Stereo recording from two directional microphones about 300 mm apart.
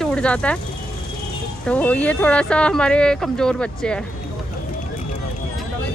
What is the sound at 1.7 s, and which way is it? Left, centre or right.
Speech, centre.